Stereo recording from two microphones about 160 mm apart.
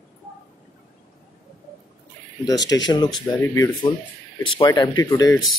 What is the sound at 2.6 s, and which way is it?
Speech, 25° left (ahead or behind).